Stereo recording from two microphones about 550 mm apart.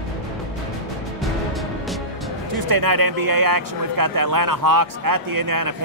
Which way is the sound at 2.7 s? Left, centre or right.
Right.